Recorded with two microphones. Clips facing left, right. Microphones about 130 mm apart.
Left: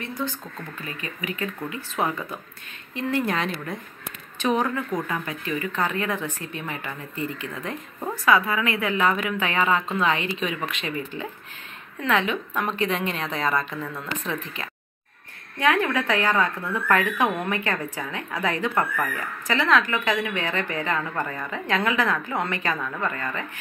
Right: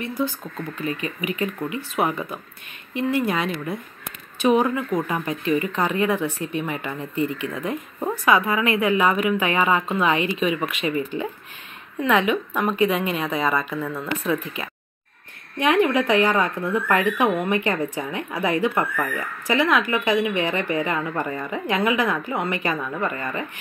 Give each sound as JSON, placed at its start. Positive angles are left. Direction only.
{"t": 0.2, "sound": "speech", "side_deg": -10}